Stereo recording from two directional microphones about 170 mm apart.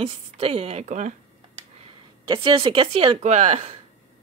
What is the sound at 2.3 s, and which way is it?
Speech, 30° right (ahead or behind).